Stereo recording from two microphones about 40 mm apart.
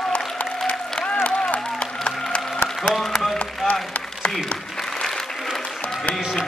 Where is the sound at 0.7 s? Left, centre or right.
Left.